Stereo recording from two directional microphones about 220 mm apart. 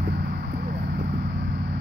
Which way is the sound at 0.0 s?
40° right (ahead or behind).